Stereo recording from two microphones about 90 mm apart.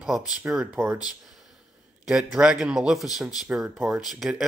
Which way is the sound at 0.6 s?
25° right (ahead or behind).